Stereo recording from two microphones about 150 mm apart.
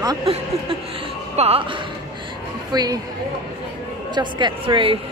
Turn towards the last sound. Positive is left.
turn(degrees=-35)  # may be behind; listen again after turning